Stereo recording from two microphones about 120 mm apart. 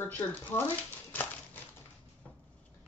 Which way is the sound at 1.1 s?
15° left (ahead or behind).